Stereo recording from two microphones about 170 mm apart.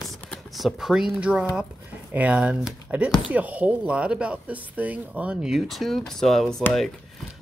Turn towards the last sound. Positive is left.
turn(degrees=5)  # may be behind; listen again after turning